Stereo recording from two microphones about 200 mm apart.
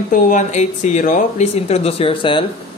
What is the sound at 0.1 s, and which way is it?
Speech, 35° left (ahead or behind).